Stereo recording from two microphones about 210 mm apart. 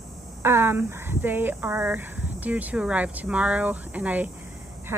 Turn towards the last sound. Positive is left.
turn(degrees=-5)  # may be behind; listen again after turning